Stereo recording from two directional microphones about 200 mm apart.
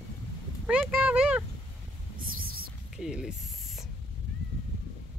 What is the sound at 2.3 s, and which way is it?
Whispering, 45° right (ahead or behind).